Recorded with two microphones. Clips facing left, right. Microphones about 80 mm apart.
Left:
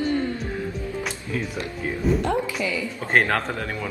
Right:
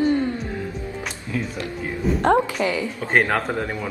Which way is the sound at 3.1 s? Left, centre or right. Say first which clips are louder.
Right 1 dB; centre.